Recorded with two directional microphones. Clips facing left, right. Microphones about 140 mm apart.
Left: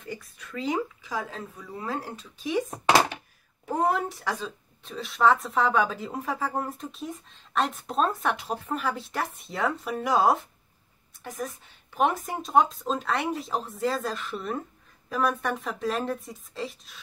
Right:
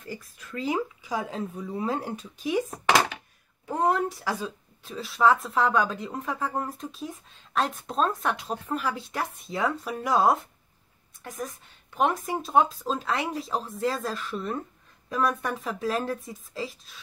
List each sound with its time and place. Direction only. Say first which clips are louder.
0.7 s speech: right 1 dB; 10° right (ahead or behind)
3.6 s speech: right 1 dB; centre (ahead or behind)